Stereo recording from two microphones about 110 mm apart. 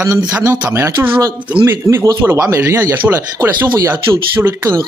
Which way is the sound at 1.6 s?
20° right (ahead or behind).